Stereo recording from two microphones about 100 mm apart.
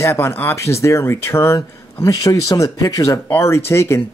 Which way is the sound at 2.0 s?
40° left (ahead or behind).